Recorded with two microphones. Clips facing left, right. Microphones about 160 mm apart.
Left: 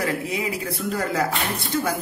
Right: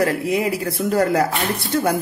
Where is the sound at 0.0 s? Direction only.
60° right (ahead or behind).